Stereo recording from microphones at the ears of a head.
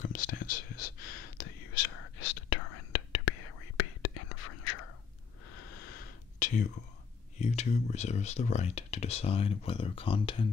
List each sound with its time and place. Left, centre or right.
0.0 s whispering: left
5.5 s a sound: left
7.3 s speech: left